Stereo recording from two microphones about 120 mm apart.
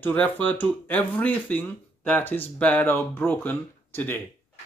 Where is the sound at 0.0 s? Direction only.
15° left (ahead or behind).